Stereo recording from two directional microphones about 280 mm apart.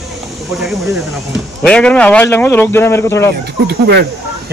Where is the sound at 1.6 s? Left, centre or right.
Centre.